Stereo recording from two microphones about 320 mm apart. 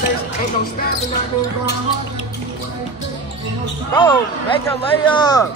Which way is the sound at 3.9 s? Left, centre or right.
Centre.